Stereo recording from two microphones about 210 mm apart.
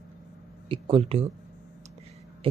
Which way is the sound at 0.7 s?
25° right (ahead or behind).